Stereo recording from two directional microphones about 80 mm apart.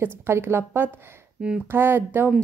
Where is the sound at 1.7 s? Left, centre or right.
Right.